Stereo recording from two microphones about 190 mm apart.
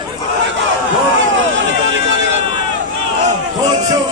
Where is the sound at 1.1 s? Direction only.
80° right.